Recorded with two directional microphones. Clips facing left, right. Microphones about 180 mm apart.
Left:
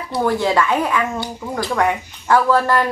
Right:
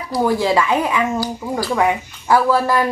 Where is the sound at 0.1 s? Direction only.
10° right (ahead or behind).